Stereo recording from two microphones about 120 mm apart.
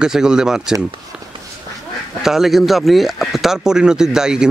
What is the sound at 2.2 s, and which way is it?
Speech, 5° right (ahead or behind).